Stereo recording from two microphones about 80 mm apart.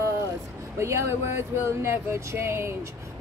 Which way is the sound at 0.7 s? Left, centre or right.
Right.